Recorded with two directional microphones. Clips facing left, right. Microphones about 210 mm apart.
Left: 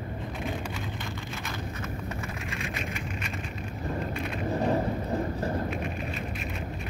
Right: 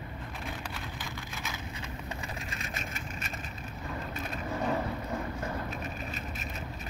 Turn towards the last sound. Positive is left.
turn(degrees=35)  # may be behind; listen again after turning